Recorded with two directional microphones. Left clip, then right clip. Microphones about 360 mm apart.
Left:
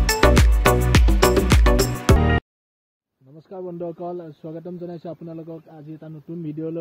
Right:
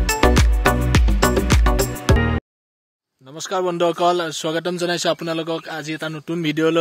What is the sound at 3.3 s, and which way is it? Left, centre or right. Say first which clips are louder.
Speech: right 12 dB; centre.